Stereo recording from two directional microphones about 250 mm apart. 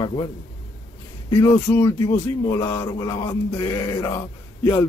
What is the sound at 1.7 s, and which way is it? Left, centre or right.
Speech, centre.